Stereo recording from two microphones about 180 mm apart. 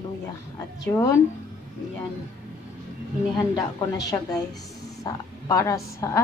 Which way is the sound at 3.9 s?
20° left (ahead or behind).